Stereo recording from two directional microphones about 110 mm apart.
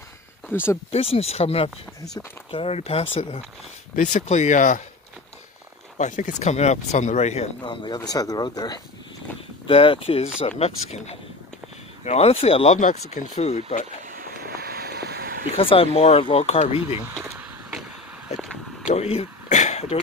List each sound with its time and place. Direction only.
0.5 s speech: 20° left (ahead or behind)
0.9 s speech: 65° left (ahead or behind)
4.1 s speech: 90° left
5.9 s speech: 90° left
7.6 s speech: 45° left (ahead or behind)
8.1 s speech: 35° left (ahead or behind)
9.7 s speech: 55° left (ahead or behind)
10.6 s speech: 80° left
15.5 s speech: 60° left (ahead or behind)
17.2 s vehicle: 15° right (ahead or behind)
18.9 s a sound: 70° left (ahead or behind)